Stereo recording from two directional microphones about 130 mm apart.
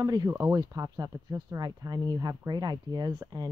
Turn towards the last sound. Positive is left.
turn(degrees=-30)  # may be behind; listen again after turning